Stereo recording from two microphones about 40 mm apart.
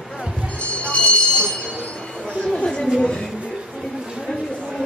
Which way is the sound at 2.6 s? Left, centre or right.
Centre.